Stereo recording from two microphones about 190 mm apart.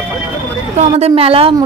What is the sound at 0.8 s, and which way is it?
Speech, 30° right (ahead or behind).